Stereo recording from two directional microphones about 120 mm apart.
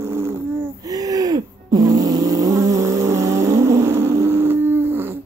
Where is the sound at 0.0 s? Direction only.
20° right (ahead or behind).